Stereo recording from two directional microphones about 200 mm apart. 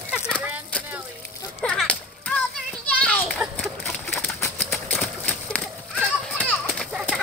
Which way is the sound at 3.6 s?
5° left (ahead or behind).